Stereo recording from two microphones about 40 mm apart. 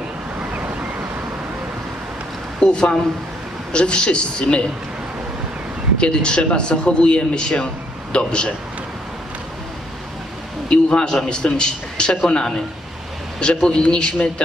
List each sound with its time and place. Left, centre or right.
0.4 s waves: right
2.6 s a woman's voice: centre
5.9 s a man's voice: left
10.7 s a man's voice: left